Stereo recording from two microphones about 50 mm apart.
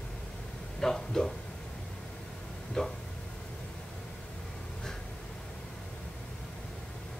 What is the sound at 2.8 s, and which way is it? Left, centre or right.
Speech, centre.